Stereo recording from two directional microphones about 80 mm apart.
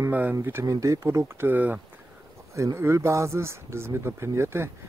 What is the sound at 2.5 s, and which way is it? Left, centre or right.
Speech, right.